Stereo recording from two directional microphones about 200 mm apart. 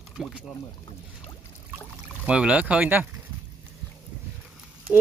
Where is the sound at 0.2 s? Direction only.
5° right (ahead or behind).